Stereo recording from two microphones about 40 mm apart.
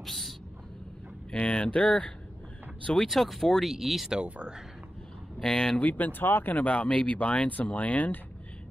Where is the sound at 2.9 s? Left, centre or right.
Centre.